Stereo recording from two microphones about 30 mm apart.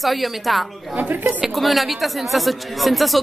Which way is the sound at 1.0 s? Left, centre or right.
Right.